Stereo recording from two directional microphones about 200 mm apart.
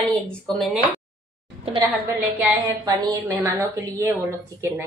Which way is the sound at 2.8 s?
15° right (ahead or behind).